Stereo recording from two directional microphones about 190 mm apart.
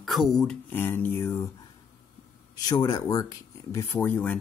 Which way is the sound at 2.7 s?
20° left (ahead or behind).